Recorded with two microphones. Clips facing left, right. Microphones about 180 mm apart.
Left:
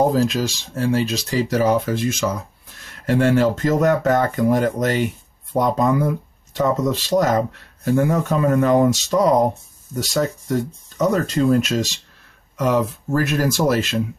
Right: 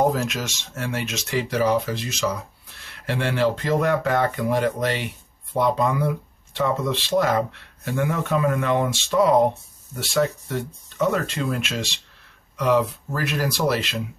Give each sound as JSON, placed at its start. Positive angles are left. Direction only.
{"t": 0.1, "sound": "speech", "side_deg": 35}